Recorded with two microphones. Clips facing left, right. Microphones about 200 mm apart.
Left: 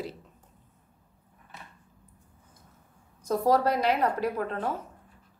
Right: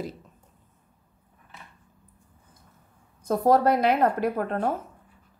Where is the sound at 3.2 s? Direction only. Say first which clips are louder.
Right 3 dB; 55° right (ahead or behind).